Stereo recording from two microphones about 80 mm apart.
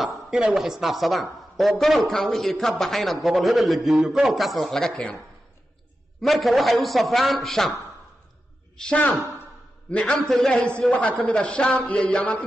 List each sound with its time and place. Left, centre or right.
0.0 s speech: centre
6.2 s speech: centre
8.7 s speech: centre
10.8 s speech: centre